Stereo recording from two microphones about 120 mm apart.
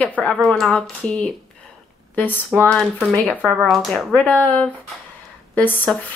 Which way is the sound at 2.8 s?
Centre (ahead or behind).